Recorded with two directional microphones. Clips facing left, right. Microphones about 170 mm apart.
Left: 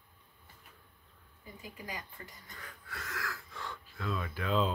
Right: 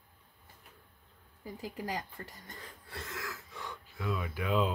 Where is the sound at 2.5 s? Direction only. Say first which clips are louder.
Right 1 dB; 30° right (ahead or behind).